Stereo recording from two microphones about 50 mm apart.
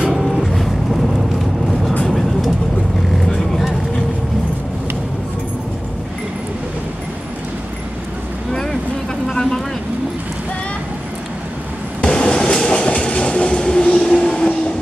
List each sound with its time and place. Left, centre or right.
0.0 s vehicle: centre
9.3 s vehicle: centre
12.0 s train: centre